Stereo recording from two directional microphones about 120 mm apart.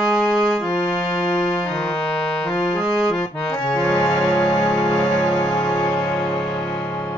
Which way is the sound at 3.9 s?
40° left (ahead or behind).